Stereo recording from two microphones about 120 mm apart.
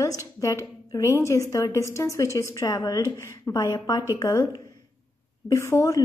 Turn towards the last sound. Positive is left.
turn(degrees=25)  # may be behind; listen again after turning